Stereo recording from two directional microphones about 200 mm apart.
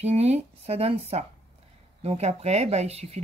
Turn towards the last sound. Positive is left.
turn(degrees=-30)  # may be behind; listen again after turning